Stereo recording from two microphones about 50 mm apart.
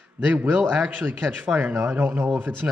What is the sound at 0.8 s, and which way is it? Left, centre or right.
Speech, right.